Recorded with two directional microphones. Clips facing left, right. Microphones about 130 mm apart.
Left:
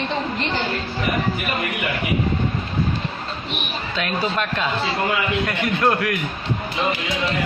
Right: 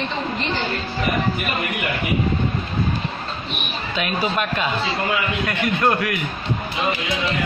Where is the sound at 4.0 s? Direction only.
10° right (ahead or behind).